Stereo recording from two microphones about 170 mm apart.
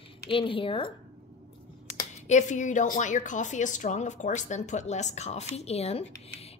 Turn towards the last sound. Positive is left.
turn(degrees=35)  # may be behind; listen again after turning